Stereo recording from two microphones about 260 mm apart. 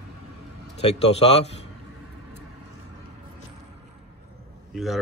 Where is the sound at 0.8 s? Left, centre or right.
Left.